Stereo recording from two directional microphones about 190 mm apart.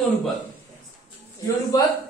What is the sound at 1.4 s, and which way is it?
Speech, 20° left (ahead or behind).